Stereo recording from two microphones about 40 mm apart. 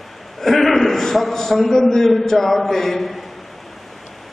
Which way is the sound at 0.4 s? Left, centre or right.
Centre.